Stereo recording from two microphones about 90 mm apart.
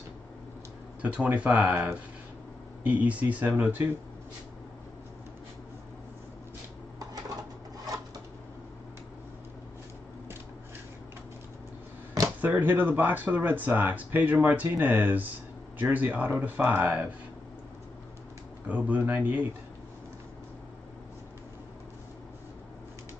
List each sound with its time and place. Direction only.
1.0 s speech: 15° right (ahead or behind)
12.4 s speech: 20° right (ahead or behind)
18.7 s speech: 15° right (ahead or behind)